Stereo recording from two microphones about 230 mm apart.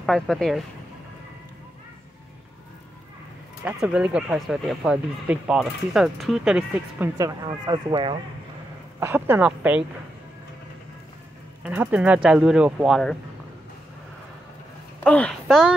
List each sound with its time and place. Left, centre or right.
0.0 s speech: centre
3.6 s speech: centre
7.2 s speech: centre
9.0 s a woman's voice: centre
11.6 s speech: centre
15.0 s speech: centre